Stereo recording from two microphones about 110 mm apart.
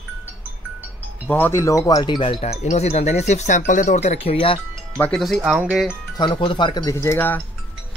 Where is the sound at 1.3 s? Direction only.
20° left (ahead or behind); by 2.2 s 35° left (ahead or behind).